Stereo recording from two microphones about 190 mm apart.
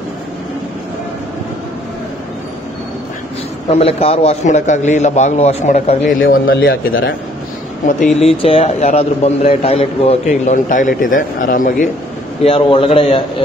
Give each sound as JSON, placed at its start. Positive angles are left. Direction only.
{"t": 3.7, "sound": "a man's voice", "side_deg": 30}
{"t": 6.3, "sound": "speech", "side_deg": 55}
{"t": 8.2, "sound": "a man's voice", "side_deg": 30}
{"t": 12.4, "sound": "a man's voice", "side_deg": 30}